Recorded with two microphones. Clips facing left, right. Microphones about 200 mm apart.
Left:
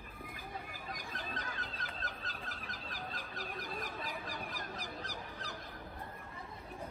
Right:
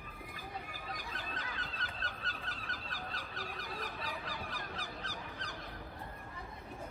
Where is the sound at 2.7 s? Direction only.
50° left (ahead or behind).